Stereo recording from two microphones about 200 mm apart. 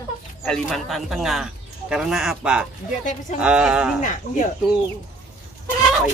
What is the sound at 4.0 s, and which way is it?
Speech, 40° left (ahead or behind).